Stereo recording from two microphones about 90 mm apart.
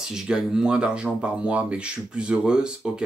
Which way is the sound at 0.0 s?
5° right (ahead or behind).